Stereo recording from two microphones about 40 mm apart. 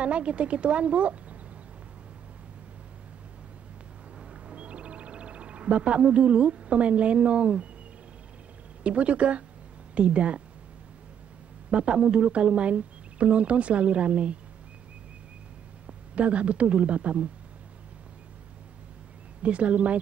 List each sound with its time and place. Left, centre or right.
0.0 s speech: right
4.3 s a sound: right
8.8 s speech: right
11.7 s speech: right
15.9 s speech: right
19.4 s speech: right